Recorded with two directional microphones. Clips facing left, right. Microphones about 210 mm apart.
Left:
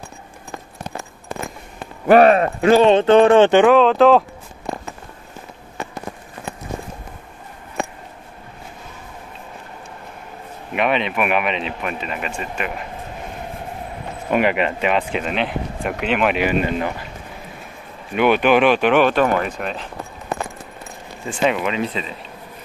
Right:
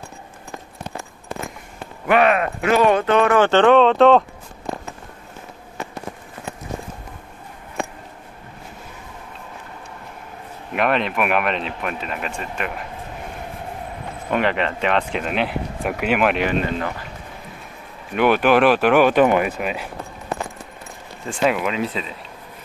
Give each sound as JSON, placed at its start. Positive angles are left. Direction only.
{"t": 2.0, "sound": "speech", "side_deg": 35}
{"t": 3.5, "sound": "speech", "side_deg": 5}
{"t": 10.7, "sound": "speech", "side_deg": 0}
{"t": 14.3, "sound": "speech", "side_deg": 10}
{"t": 18.1, "sound": "speech", "side_deg": 0}
{"t": 21.3, "sound": "speech", "side_deg": 0}